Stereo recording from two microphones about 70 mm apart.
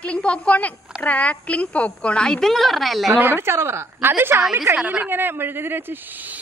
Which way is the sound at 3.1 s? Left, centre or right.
Right.